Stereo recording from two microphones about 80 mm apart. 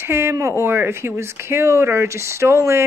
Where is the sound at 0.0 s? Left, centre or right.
Right.